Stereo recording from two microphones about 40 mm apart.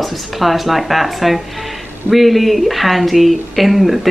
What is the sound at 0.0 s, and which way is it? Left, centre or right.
Speech, centre.